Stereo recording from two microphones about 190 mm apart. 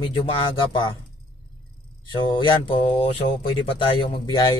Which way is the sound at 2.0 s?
25° left (ahead or behind).